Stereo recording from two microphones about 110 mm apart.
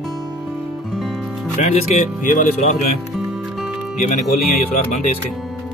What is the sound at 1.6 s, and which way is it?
Speech, 90° left.